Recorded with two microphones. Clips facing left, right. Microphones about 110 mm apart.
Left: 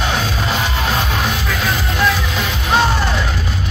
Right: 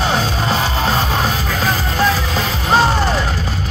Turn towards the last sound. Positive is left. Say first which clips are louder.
# right 2 dB
turn(degrees=-35)  # may be behind; listen again after turning